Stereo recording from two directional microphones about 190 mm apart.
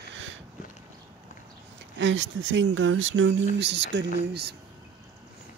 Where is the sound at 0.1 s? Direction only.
80° right.